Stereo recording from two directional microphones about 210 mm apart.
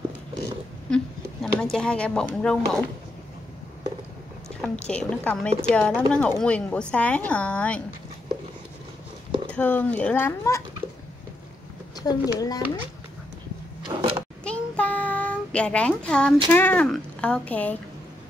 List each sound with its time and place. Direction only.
0.8 s speech: 5° left (ahead or behind)
4.6 s a woman's voice: 5° left (ahead or behind)
9.5 s speech: 10° left (ahead or behind)
12.1 s speech: 20° left (ahead or behind)
13.8 s a sound: 20° right (ahead or behind)
14.4 s child singing: 5° left (ahead or behind)
16.4 s speech: 10° left (ahead or behind)